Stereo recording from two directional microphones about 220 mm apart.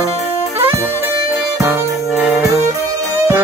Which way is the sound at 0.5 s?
10° right (ahead or behind).